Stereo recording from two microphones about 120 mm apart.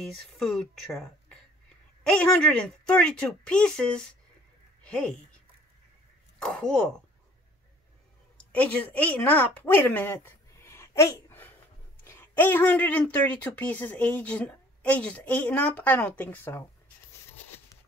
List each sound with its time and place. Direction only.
0.0 s a woman's voice: centre (ahead or behind)
6.4 s speech: 5° left (ahead or behind)
8.5 s a woman's voice: 15° left (ahead or behind)